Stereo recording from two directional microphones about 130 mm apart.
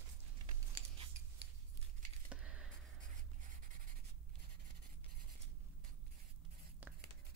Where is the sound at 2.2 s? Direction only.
10° right (ahead or behind).